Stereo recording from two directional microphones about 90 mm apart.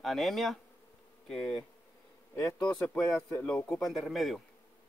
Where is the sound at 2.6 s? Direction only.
15° left (ahead or behind).